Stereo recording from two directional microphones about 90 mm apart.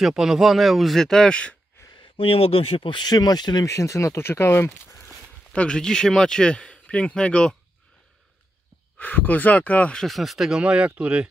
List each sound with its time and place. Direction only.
0.0 s speech: 5° right (ahead or behind); by 1.6 s 10° left (ahead or behind)
2.0 s speech: 90° left; by 3.6 s 50° left (ahead or behind)
3.6 s speech: 35° left (ahead or behind)
5.5 s speech: 10° left (ahead or behind)
8.9 s speech: 20° left (ahead or behind)
10.0 s speech: centre (ahead or behind)